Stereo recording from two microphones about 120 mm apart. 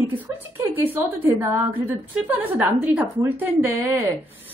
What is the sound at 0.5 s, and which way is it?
A woman's voice, 20° right (ahead or behind).